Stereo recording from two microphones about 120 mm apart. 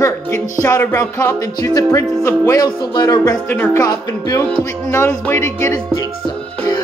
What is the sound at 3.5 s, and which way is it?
Music, 20° left (ahead or behind).